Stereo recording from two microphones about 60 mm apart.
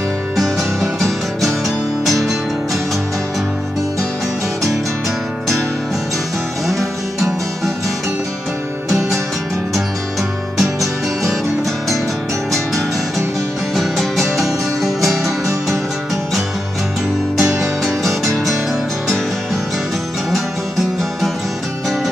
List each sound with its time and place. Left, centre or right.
0.4 s music: centre
6.7 s music: centre
13.7 s music: centre
17.4 s music: centre